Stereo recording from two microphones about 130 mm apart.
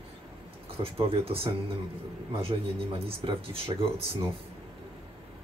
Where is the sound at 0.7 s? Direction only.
45° right (ahead or behind).